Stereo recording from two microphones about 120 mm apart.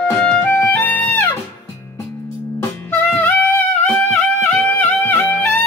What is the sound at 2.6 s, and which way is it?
Music, 15° left (ahead or behind).